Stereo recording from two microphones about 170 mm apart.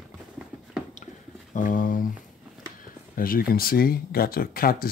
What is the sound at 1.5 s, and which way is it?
Speech, 50° left (ahead or behind).